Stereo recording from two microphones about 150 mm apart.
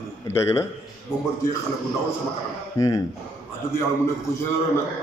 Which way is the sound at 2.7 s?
20° left (ahead or behind).